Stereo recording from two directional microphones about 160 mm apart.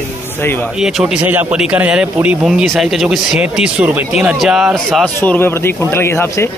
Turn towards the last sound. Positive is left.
turn(degrees=15)  # may be behind; listen again after turning